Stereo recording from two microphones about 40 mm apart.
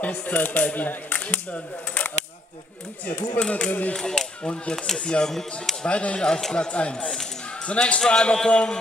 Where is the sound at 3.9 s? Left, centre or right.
Centre.